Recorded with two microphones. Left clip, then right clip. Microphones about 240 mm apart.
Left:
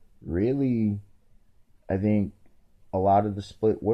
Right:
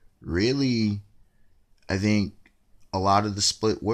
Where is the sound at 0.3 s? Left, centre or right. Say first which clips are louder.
Right 1 dB; centre.